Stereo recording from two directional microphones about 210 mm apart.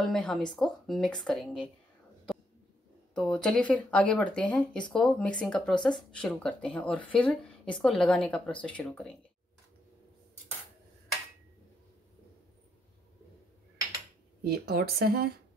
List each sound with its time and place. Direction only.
0.0 s speech: 5° left (ahead or behind)
3.2 s speech: 5° left (ahead or behind)
14.4 s speech: 45° right (ahead or behind)